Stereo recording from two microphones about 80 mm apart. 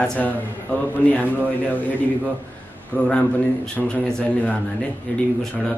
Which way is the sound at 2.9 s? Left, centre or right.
Left.